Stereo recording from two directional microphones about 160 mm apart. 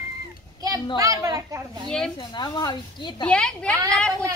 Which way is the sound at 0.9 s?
20° right (ahead or behind).